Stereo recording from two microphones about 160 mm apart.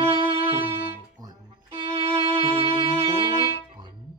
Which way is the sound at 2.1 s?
35° right (ahead or behind).